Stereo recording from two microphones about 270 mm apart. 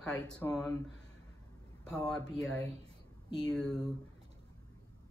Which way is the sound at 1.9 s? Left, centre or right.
Centre.